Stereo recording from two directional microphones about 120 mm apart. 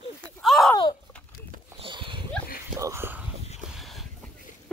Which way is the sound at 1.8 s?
45° right (ahead or behind).